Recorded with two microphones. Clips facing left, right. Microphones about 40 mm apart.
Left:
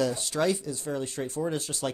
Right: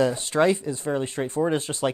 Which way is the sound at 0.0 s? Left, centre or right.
Right.